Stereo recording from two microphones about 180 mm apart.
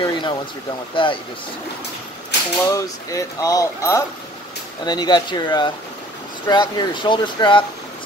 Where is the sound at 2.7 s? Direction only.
20° left (ahead or behind).